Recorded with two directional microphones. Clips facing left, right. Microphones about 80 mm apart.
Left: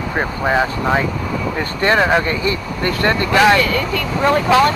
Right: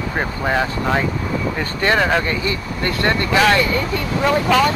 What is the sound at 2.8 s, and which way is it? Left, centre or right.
Speech, left.